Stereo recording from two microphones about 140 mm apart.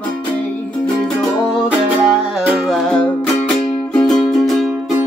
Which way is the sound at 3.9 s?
5° left (ahead or behind).